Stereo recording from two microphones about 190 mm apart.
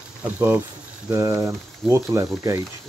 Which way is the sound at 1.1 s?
15° right (ahead or behind).